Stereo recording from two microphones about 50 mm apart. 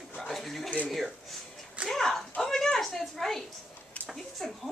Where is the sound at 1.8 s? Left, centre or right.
Centre.